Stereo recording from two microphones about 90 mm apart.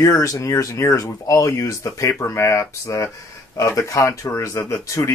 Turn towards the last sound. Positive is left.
turn(degrees=35)  # may be behind; listen again after turning